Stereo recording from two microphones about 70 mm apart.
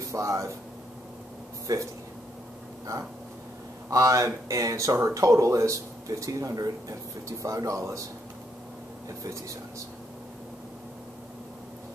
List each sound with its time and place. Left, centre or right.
0.0 s speech: right
1.7 s speech: right
3.9 s speech: right